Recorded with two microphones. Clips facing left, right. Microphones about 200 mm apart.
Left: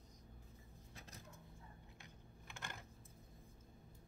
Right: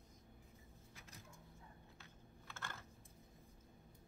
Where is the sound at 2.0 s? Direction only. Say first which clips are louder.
Even; 15° left (ahead or behind).